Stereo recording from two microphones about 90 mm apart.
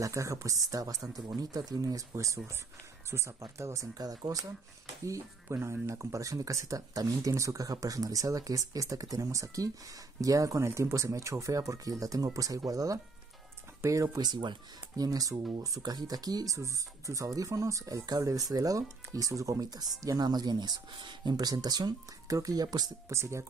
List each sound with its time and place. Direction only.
0.0 s speech: 35° right (ahead or behind)
5.0 s speech: 30° right (ahead or behind); by 15.0 s 55° right (ahead or behind)
15.0 s speech: 40° right (ahead or behind)
23.0 s speech: 30° right (ahead or behind)